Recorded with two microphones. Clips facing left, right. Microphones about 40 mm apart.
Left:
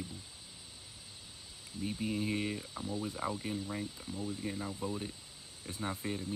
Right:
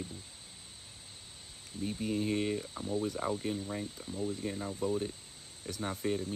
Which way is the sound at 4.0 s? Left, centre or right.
Right.